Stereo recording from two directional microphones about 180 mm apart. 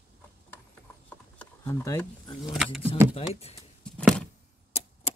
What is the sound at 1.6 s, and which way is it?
Speech, 20° left (ahead or behind).